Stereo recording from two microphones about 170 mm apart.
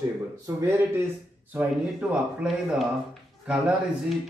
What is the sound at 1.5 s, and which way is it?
Speech, 5° right (ahead or behind).